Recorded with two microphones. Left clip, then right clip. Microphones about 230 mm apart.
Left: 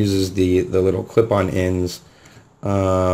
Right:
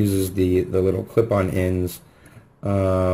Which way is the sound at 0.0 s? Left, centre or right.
Centre.